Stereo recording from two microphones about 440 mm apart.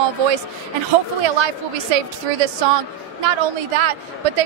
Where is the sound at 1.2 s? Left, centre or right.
Right.